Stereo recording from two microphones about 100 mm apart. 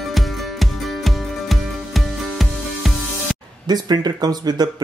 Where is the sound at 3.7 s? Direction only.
45° right (ahead or behind).